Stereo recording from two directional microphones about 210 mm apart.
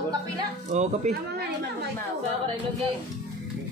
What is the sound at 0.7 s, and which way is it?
Speech, 35° right (ahead or behind).